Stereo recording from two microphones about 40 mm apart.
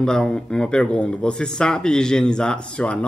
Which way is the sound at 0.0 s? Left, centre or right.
Centre.